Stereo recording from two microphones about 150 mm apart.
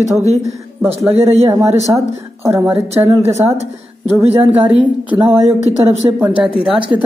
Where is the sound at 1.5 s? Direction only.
15° right (ahead or behind).